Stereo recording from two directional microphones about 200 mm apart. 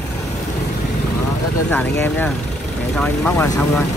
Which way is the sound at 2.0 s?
10° left (ahead or behind).